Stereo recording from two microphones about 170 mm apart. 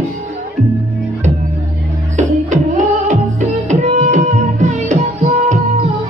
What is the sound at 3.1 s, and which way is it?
Music, 45° right (ahead or behind).